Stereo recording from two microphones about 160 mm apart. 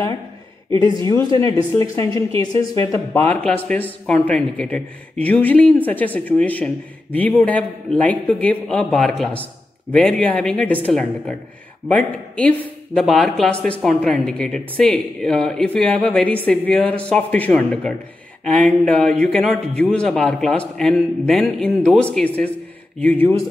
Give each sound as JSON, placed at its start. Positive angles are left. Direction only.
{"t": 0.7, "sound": "speech", "side_deg": -30}
{"t": 1.0, "sound": "a man's voice", "side_deg": 20}